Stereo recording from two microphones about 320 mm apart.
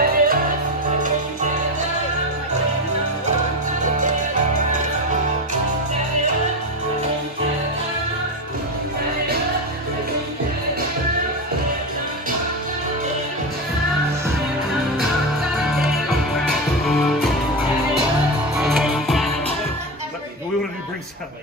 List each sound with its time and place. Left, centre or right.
0.0 s music: right
15.7 s music: centre
18.6 s music: centre